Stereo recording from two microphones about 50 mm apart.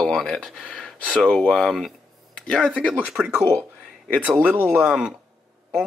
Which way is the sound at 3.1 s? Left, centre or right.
Centre.